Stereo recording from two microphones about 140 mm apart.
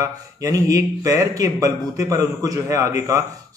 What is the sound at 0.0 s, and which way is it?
A man's voice, 25° right (ahead or behind).